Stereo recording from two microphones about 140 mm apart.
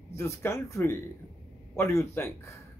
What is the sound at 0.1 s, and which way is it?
A man's voice, 20° left (ahead or behind).